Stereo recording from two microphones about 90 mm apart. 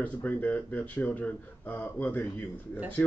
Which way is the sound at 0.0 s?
15° left (ahead or behind).